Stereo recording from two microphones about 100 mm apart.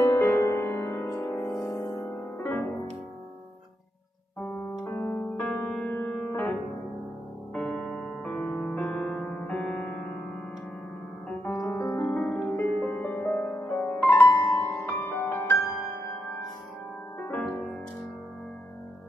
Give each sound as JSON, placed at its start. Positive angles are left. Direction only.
{"t": 0.0, "sound": "music", "side_deg": 25}
{"t": 2.0, "sound": "music", "side_deg": 20}
{"t": 4.4, "sound": "music", "side_deg": 20}
{"t": 7.5, "sound": "music", "side_deg": 10}
{"t": 11.5, "sound": "piano", "side_deg": 30}
{"t": 12.1, "sound": "music", "side_deg": 10}
{"t": 12.6, "sound": "music", "side_deg": 20}